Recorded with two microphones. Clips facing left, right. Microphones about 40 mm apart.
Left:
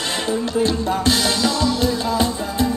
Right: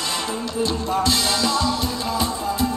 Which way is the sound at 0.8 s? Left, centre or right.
Left.